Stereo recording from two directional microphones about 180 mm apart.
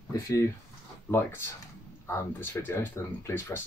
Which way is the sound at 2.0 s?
15° left (ahead or behind).